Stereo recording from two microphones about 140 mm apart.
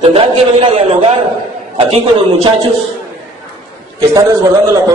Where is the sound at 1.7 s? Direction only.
45° right (ahead or behind).